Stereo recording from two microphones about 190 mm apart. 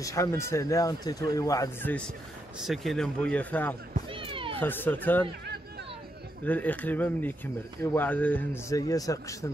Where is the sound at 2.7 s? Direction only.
Centre (ahead or behind).